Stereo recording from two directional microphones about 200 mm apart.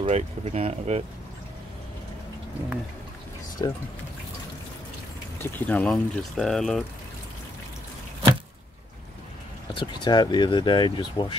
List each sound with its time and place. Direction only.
0.0 s speech: 35° right (ahead or behind)
3.6 s speech: 20° left (ahead or behind)
5.4 s speech: 10° left (ahead or behind)
9.8 s speech: 20° left (ahead or behind)